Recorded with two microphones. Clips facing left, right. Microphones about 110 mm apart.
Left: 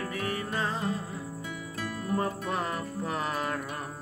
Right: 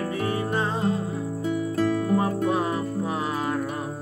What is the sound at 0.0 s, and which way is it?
Music, 25° right (ahead or behind).